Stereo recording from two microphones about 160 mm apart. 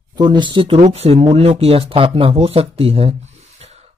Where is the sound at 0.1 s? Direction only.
25° right (ahead or behind).